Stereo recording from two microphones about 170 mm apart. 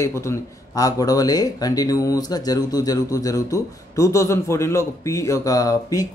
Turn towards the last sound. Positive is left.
turn(degrees=20)  # may be behind; listen again after turning